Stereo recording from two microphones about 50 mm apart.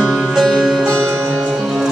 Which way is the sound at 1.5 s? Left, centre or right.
Centre.